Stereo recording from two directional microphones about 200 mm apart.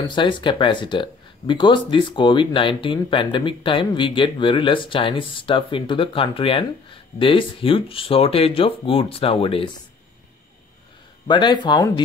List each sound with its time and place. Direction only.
0.1 s speech: 25° left (ahead or behind)
11.2 s speech: 20° left (ahead or behind)